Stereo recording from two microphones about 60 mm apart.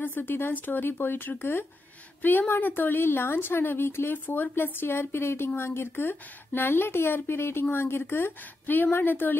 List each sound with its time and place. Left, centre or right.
0.0 s speech: left